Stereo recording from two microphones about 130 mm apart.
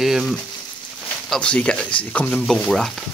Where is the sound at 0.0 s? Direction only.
5° right (ahead or behind).